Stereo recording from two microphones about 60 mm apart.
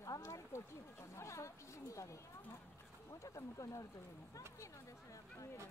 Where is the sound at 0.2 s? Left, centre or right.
Left.